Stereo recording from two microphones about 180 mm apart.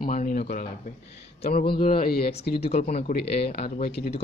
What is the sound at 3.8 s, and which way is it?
Speech, 65° left (ahead or behind).